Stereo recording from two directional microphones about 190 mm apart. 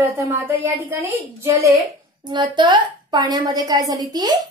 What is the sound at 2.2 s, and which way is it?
A woman's voice, 25° right (ahead or behind).